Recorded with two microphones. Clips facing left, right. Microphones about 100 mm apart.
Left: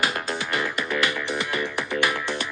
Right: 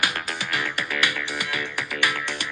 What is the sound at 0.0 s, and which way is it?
Music, 25° left (ahead or behind).